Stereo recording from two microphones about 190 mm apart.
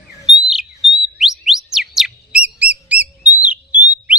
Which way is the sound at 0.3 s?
Centre (ahead or behind).